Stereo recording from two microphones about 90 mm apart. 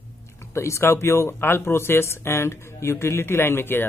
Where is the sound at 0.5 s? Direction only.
30° left (ahead or behind).